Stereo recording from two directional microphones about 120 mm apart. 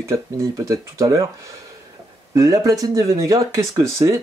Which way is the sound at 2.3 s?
30° right (ahead or behind).